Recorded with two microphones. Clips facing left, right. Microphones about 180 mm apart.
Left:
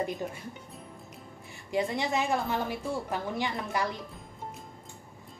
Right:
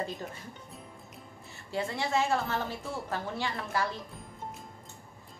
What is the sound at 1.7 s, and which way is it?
A woman's voice, 15° left (ahead or behind).